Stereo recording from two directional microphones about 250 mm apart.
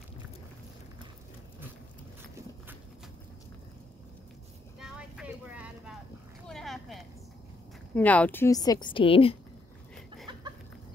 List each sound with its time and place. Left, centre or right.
4.7 s vehicle: centre
6.4 s a sound: centre
7.9 s a woman's voice: centre; by 9.4 s left
10.3 s chicken: centre